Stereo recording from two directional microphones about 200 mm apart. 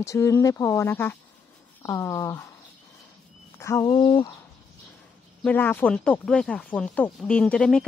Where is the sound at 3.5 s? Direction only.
15° left (ahead or behind).